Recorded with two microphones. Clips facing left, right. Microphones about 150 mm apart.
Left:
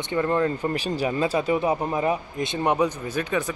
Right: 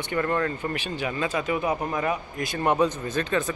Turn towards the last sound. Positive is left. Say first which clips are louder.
# even
turn(degrees=10)  # may be behind; listen again after turning